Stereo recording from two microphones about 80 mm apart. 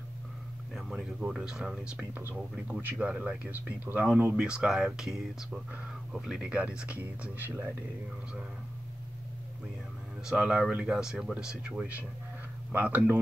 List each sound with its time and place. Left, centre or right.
0.7 s speech: centre
10.3 s speech: centre